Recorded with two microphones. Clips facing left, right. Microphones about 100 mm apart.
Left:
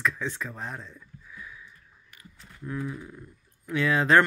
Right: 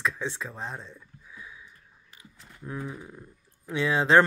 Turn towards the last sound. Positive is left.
turn(degrees=-20)  # may be behind; listen again after turning